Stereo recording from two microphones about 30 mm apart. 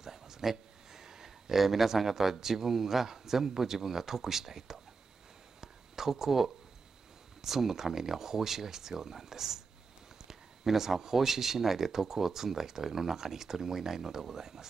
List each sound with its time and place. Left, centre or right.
0.0 s speech: centre
5.6 s a sound: centre
7.4 s speech: centre